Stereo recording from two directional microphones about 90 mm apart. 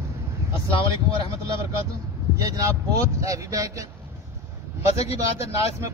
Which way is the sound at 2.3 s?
40° right (ahead or behind).